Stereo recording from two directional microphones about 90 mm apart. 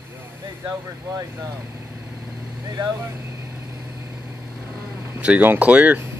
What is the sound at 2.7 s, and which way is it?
Speech, 40° right (ahead or behind).